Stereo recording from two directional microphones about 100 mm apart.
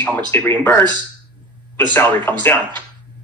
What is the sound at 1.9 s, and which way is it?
Speech, 20° left (ahead or behind).